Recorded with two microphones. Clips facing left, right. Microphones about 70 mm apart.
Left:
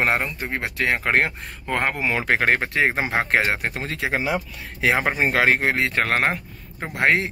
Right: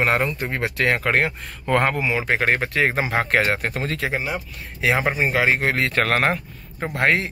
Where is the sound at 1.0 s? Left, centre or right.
Left.